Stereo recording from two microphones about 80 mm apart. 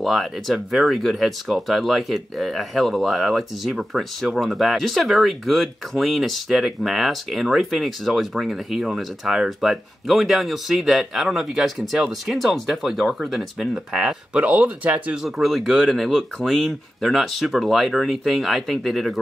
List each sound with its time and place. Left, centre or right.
0.0 s speech: centre
14.3 s speech: centre
15.2 s speech: centre